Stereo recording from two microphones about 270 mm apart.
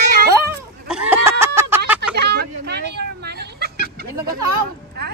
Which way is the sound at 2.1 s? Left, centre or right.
Right.